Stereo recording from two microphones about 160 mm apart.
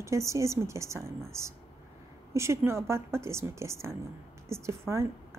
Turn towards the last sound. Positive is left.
turn(degrees=-15)  # may be behind; listen again after turning